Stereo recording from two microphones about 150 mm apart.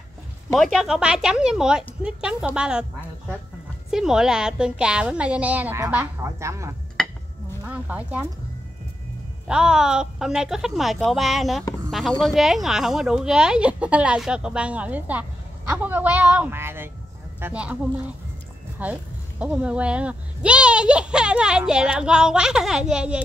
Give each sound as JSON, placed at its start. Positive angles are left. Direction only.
{"t": 0.5, "sound": "speech", "side_deg": 0}
{"t": 3.9, "sound": "speech", "side_deg": -5}
{"t": 9.5, "sound": "speech", "side_deg": -5}